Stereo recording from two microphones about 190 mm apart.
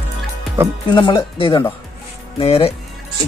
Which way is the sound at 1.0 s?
25° left (ahead or behind).